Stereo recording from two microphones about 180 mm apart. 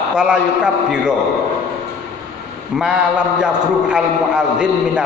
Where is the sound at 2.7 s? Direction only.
5° right (ahead or behind).